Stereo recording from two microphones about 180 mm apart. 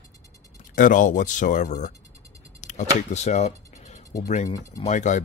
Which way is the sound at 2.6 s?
40° left (ahead or behind).